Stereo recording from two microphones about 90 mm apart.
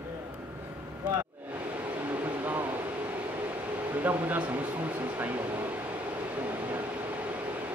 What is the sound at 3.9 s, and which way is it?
Speech, 20° right (ahead or behind).